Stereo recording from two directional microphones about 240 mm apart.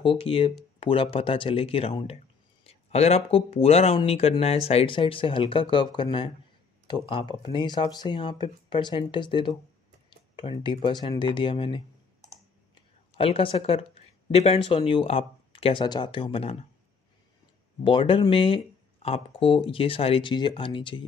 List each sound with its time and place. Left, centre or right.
0.0 s speech: left
13.2 s speech: left
17.8 s speech: left